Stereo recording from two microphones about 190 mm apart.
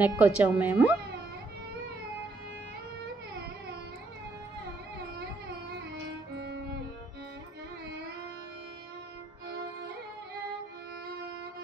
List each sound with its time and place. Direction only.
0.0 s speech: 10° right (ahead or behind)
6.3 s music: 60° right (ahead or behind)